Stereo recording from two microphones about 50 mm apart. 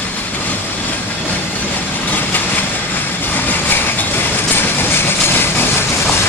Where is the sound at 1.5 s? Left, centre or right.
Left.